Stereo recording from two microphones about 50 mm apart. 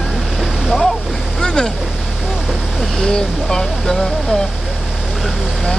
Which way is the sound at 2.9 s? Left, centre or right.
Centre.